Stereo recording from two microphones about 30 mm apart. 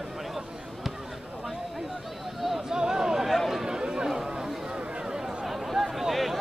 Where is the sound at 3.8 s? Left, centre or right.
Right.